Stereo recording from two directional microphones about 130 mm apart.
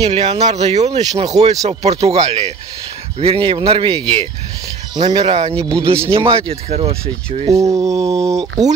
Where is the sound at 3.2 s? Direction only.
45° right (ahead or behind).